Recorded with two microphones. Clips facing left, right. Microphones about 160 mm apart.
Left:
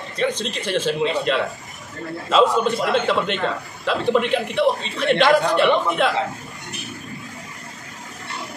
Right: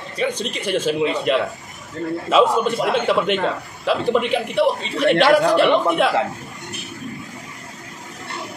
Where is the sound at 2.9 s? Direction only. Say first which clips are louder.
Right 2 dB; 5° right (ahead or behind).